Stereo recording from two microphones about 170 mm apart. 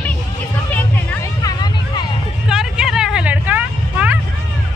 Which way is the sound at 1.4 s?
25° left (ahead or behind).